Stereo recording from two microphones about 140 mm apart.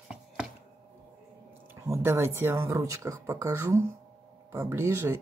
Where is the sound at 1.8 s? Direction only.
20° right (ahead or behind).